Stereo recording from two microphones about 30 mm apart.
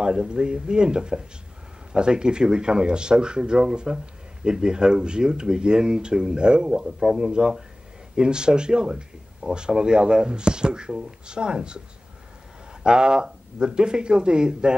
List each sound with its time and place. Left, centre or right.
0.0 s speech: right
12.8 s speech: right